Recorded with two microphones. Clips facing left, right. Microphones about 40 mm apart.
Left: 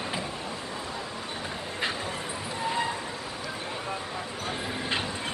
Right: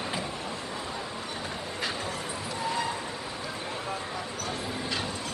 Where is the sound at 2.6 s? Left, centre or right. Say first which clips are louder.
Left 2 dB; left.